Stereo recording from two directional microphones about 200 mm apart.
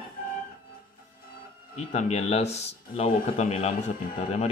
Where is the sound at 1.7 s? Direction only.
35° left (ahead or behind).